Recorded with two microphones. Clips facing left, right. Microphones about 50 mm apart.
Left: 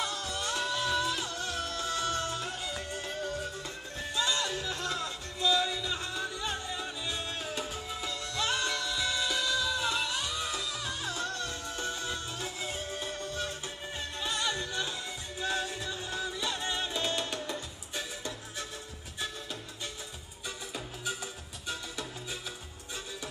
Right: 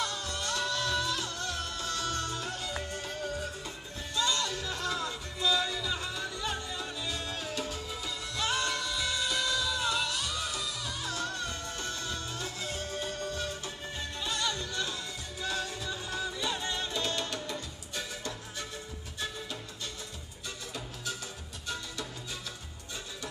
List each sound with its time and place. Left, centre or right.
0.0 s music: centre
20.7 s music: centre